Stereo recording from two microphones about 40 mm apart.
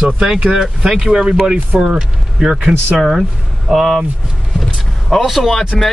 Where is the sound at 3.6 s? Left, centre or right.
Centre.